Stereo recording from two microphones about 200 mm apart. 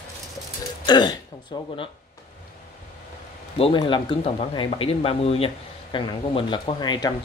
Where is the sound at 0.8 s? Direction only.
20° left (ahead or behind).